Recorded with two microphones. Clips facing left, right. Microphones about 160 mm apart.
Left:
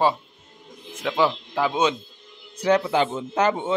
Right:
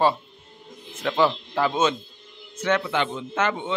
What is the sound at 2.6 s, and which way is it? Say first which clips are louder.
A man's voice: left 4 dB; 35° left (ahead or behind).